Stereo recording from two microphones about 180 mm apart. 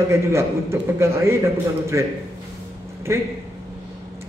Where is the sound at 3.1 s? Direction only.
15° right (ahead or behind).